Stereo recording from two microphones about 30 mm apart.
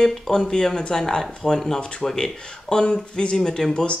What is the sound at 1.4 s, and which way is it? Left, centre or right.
Speech, centre.